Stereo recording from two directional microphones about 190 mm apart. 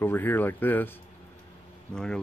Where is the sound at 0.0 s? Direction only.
10° left (ahead or behind).